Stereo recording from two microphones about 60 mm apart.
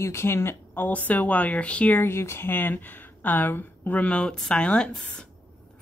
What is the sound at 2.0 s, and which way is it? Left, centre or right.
A woman's voice, left.